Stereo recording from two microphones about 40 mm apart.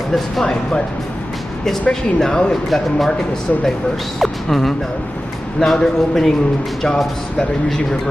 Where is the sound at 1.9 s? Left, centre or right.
Centre.